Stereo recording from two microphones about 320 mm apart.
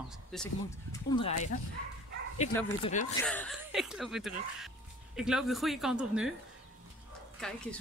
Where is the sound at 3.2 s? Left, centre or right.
Centre.